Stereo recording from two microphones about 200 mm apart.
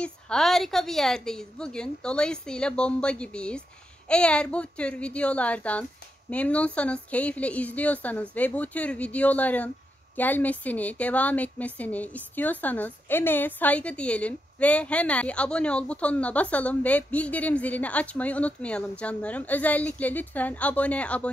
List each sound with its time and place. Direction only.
0.0 s a woman's voice: 5° left (ahead or behind)